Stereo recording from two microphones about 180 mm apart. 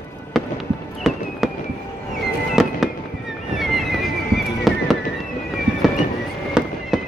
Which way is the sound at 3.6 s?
Centre (ahead or behind).